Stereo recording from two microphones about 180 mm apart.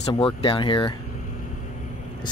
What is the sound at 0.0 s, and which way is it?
Speech, 30° left (ahead or behind).